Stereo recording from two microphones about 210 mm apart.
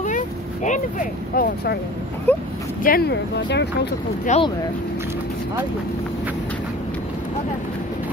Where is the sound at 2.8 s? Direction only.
45° left (ahead or behind).